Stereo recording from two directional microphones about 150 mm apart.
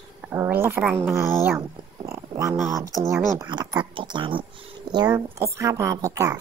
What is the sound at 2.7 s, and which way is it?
Speech, 20° right (ahead or behind).